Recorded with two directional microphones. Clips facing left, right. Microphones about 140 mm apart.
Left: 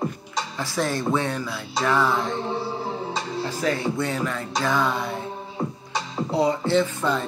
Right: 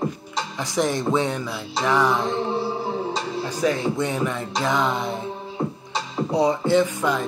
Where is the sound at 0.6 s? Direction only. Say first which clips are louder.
Right 3 dB; 15° right (ahead or behind).